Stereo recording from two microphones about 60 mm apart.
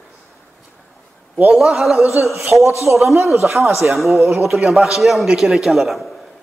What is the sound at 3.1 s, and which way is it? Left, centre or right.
Speech, right.